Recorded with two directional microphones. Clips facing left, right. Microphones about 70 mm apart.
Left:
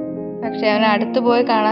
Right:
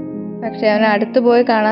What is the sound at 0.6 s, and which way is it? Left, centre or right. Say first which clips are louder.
Speech: right 3 dB; right.